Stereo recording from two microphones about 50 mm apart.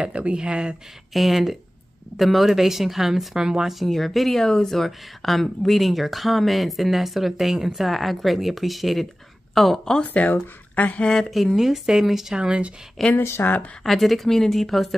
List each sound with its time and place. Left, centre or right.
0.0 s speech: right
1.1 s speech: centre
3.8 s speech: centre
10.0 s speech: left
11.0 s speech: centre
11.2 s speech: centre
12.4 s speech: right
13.0 s speech: centre
13.4 s speech: left
13.8 s speech: centre